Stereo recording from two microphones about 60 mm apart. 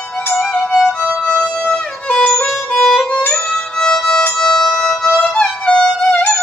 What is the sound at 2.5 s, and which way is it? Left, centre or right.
Music, centre.